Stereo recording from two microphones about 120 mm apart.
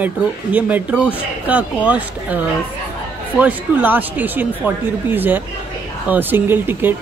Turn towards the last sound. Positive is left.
turn(degrees=-15)  # may be behind; listen again after turning